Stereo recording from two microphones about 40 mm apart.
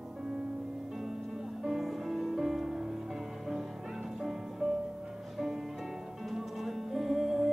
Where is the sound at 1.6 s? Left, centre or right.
Centre.